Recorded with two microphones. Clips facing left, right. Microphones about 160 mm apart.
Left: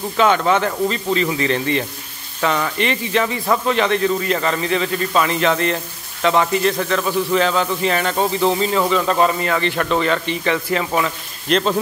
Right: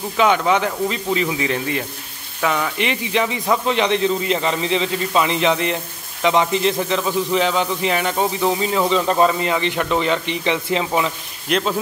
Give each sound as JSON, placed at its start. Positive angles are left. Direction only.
{"t": 0.2, "sound": "speech", "side_deg": -15}
{"t": 8.8, "sound": "speech", "side_deg": -20}